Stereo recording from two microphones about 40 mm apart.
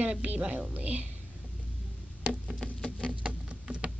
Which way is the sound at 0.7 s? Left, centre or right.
Right.